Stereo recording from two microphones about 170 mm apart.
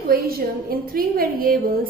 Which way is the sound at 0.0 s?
60° right (ahead or behind).